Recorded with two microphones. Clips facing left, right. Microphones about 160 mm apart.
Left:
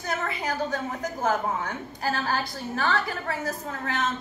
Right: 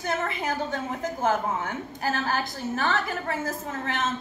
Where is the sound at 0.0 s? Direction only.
20° right (ahead or behind).